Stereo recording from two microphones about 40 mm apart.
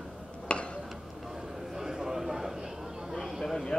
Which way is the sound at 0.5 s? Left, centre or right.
Left.